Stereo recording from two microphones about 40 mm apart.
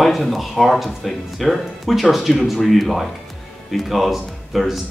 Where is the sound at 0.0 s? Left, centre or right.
Centre.